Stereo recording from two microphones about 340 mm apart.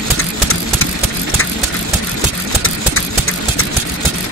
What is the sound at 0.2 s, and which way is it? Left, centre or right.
Vehicle, left.